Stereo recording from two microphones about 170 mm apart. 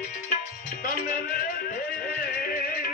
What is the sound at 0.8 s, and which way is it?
Music, 55° left (ahead or behind).